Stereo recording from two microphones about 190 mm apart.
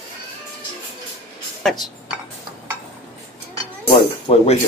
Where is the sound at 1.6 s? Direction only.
Centre (ahead or behind).